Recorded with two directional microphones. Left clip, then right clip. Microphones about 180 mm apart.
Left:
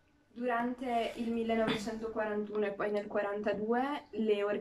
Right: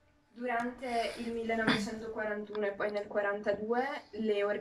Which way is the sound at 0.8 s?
Centre (ahead or behind).